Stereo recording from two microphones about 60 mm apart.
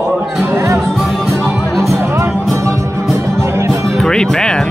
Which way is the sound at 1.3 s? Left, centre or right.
Right.